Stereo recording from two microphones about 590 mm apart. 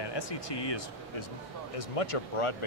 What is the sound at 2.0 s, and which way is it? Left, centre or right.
Speech, left.